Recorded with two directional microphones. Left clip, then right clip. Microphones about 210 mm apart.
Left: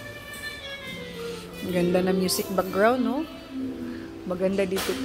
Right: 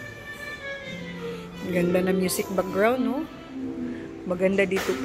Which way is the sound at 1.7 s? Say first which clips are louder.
Even; 15° left (ahead or behind).